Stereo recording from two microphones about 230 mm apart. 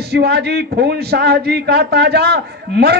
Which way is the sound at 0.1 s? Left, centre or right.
Right.